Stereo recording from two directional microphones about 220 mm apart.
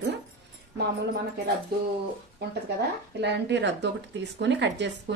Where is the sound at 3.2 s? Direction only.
50° right (ahead or behind).